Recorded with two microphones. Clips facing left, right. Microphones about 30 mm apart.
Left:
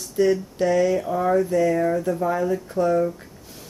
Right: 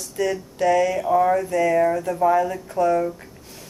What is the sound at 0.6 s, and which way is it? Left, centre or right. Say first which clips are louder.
Speech: right 3 dB; right.